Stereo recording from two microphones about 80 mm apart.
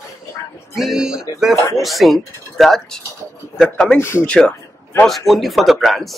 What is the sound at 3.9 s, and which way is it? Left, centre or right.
Speech, left.